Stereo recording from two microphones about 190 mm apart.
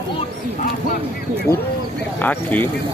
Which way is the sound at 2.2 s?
10° left (ahead or behind).